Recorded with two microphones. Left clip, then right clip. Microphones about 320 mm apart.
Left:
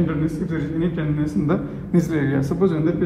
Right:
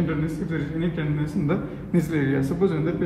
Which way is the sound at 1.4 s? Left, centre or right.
Centre.